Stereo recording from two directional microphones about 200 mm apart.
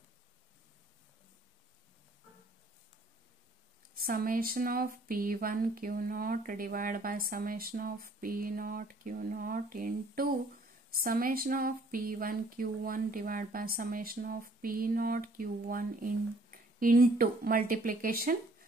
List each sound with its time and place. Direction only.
3.9 s speech: 45° right (ahead or behind)